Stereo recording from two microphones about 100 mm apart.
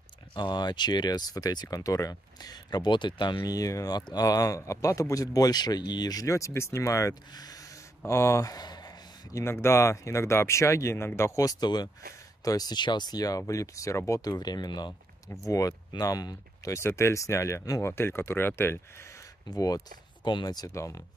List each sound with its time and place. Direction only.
0.3 s speech: 50° left (ahead or behind)
9.3 s speech: 25° left (ahead or behind)
14.3 s speech: 45° left (ahead or behind); by 19.2 s 25° left (ahead or behind)
19.5 s speech: 40° left (ahead or behind)